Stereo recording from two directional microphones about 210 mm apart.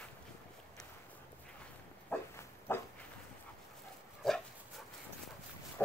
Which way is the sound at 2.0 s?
10° left (ahead or behind).